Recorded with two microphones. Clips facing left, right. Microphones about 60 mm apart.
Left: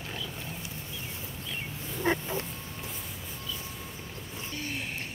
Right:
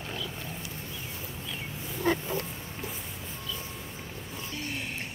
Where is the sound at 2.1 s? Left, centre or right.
Left.